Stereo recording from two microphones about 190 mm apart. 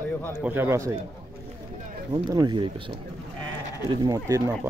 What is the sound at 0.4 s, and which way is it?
Speech, 10° right (ahead or behind).